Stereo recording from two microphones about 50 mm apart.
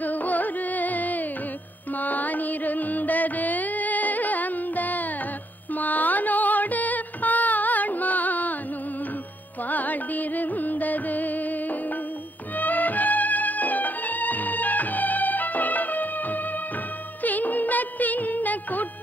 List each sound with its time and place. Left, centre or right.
0.0 s music: left
9.7 s music: left
12.5 s music: left